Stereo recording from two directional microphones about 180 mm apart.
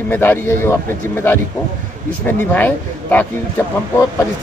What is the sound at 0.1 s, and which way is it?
Speech, 10° left (ahead or behind).